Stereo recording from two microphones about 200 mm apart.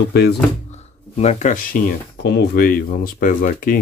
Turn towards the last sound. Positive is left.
turn(degrees=45)  # may be behind; listen again after turning